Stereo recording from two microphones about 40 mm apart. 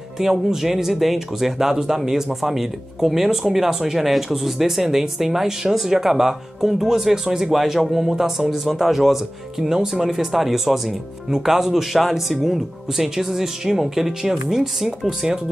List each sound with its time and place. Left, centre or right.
0.2 s speech: centre
14.9 s speech: centre